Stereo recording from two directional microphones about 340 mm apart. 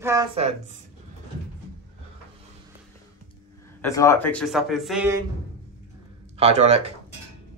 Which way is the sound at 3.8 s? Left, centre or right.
Centre.